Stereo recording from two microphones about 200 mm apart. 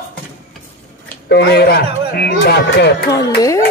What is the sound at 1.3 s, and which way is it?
Speech, 55° left (ahead or behind).